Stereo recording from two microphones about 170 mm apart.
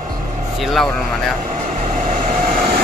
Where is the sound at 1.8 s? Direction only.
50° right (ahead or behind).